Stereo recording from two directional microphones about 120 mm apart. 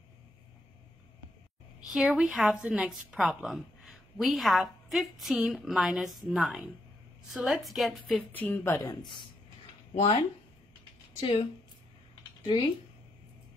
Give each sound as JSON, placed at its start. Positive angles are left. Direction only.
{"t": 1.9, "sound": "a woman's voice", "side_deg": -5}
{"t": 8.2, "sound": "speech", "side_deg": 15}
{"t": 8.8, "sound": "speech", "side_deg": 40}
{"t": 11.1, "sound": "a woman's voice", "side_deg": 55}
{"t": 12.4, "sound": "a woman's voice", "side_deg": 50}